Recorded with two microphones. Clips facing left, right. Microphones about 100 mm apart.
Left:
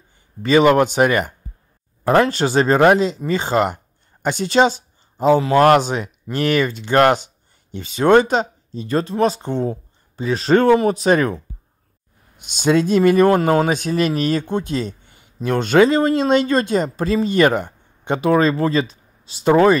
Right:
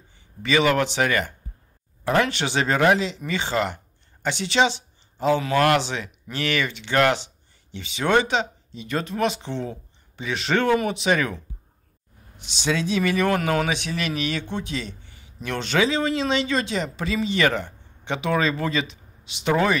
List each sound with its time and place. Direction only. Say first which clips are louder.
0.4 s a man's voice: left 7 dB; 40° left (ahead or behind)